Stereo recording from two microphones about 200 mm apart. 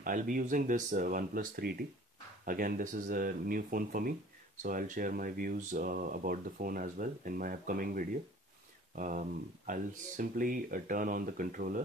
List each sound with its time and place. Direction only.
0.0 s speech: 40° right (ahead or behind)